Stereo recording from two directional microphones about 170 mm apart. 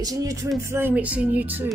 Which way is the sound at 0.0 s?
20° right (ahead or behind).